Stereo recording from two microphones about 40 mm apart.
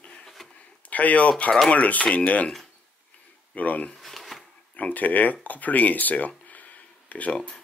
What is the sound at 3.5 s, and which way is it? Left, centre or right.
Speech, left.